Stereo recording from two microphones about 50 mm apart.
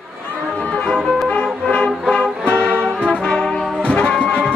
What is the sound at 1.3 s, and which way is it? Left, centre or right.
Music, left.